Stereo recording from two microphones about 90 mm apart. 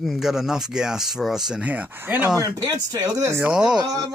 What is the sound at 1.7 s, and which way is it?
Speech, 15° right (ahead or behind).